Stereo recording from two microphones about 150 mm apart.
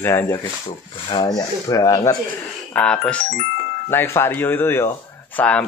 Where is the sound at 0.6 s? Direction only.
35° left (ahead or behind).